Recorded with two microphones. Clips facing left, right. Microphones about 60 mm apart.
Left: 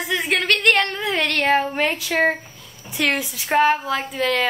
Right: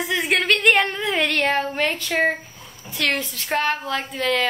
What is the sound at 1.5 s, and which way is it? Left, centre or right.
A woman's voice, centre.